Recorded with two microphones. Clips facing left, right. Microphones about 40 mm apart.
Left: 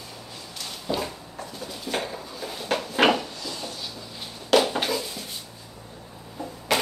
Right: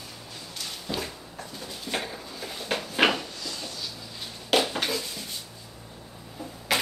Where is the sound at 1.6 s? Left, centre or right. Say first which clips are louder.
Left 3 dB; centre.